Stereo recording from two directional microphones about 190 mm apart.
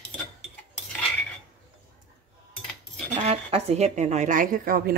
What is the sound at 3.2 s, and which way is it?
Speech, 35° right (ahead or behind).